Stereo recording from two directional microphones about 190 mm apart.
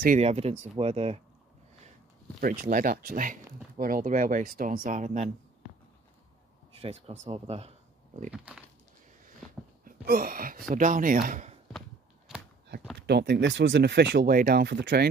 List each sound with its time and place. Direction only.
0.0 s speech: 40° right (ahead or behind)
2.4 s speech: 45° right (ahead or behind)
6.7 s speech: 30° right (ahead or behind)
9.8 s speech: 50° right (ahead or behind)
12.3 s a sound: 5° right (ahead or behind)
13.0 s speech: 60° right (ahead or behind)